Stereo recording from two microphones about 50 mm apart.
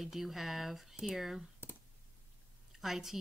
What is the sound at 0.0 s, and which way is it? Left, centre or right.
Speech, centre.